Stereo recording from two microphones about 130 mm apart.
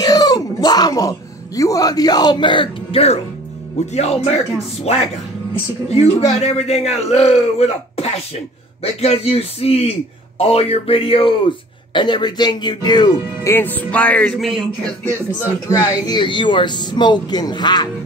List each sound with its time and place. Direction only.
0.0 s a sound: 30° left (ahead or behind); by 3.2 s 45° left (ahead or behind)
3.8 s a man's voice: 55° left (ahead or behind); by 13.5 s 30° left (ahead or behind)
13.5 s speech: 15° left (ahead or behind)
15.7 s speech: 30° left (ahead or behind)